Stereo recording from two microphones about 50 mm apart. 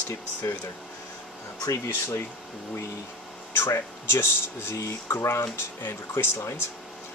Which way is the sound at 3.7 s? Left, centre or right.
Left.